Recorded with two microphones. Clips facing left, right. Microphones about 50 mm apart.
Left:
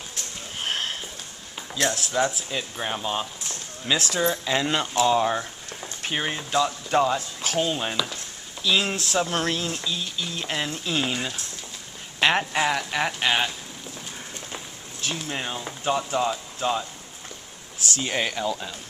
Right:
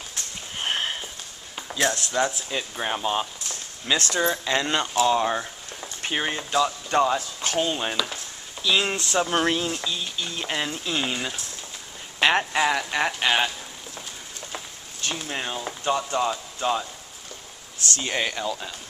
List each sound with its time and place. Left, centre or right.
0.6 s sniff: centre
1.7 s speech: centre
3.4 s a sound: centre
4.5 s speech: centre
15.0 s speech: centre
17.8 s speech: centre